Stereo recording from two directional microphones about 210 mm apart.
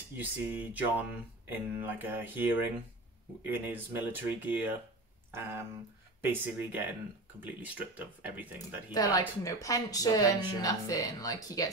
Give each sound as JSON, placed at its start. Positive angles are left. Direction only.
{"t": 0.2, "sound": "speech", "side_deg": -10}
{"t": 8.9, "sound": "speech", "side_deg": 15}